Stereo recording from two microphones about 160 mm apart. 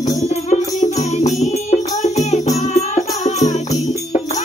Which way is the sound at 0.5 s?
45° left (ahead or behind).